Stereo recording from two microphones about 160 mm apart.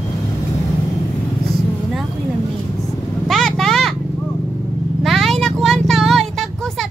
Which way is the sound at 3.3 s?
5° left (ahead or behind).